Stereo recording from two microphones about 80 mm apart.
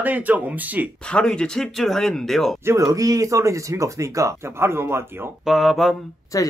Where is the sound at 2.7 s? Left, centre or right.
Right.